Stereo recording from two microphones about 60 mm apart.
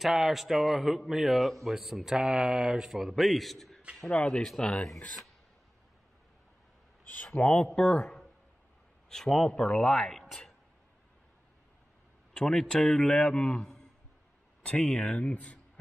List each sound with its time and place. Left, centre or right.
0.0 s a man's voice: centre
7.2 s a man's voice: centre
12.4 s a man's voice: centre